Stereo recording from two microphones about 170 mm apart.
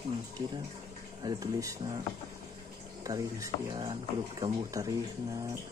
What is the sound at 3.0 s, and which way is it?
Speech, 20° right (ahead or behind).